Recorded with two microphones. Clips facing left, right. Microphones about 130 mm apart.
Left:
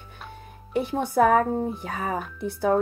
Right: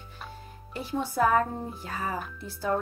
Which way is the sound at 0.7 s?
60° left (ahead or behind).